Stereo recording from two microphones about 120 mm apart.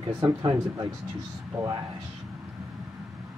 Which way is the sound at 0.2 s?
30° right (ahead or behind).